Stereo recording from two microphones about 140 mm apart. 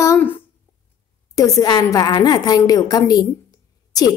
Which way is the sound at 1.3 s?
25° left (ahead or behind).